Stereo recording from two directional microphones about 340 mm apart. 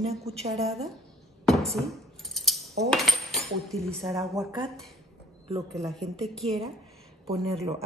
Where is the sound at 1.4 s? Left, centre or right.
Centre.